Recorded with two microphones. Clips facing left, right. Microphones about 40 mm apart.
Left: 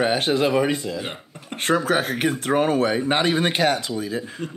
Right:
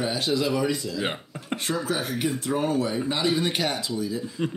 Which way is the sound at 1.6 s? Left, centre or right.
Left.